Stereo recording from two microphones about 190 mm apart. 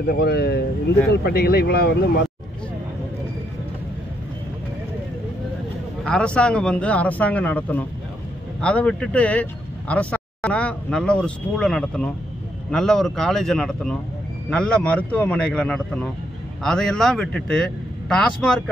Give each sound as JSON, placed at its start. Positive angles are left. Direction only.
{"t": 0.0, "sound": "speech", "side_deg": 55}
{"t": 6.0, "sound": "a man's voice", "side_deg": 5}